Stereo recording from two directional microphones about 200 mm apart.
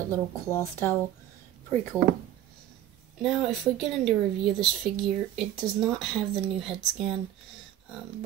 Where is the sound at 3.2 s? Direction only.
Centre (ahead or behind).